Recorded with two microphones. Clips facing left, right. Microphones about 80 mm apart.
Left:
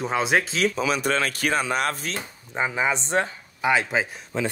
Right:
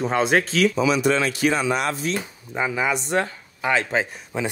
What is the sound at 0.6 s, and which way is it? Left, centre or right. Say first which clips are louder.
Speech: right 4 dB; left.